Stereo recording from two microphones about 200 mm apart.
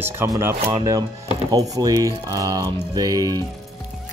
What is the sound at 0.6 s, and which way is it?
Speech, 25° right (ahead or behind).